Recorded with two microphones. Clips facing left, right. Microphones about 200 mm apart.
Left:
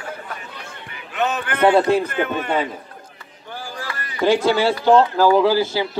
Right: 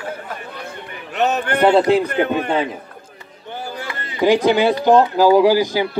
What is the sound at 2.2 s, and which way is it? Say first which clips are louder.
Speech: right 3 dB; 35° right (ahead or behind).